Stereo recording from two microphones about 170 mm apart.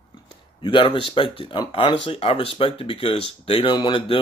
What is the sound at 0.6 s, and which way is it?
Speech, 30° left (ahead or behind).